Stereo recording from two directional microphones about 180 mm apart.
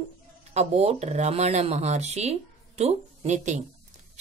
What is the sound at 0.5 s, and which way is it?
Speech, 35° right (ahead or behind).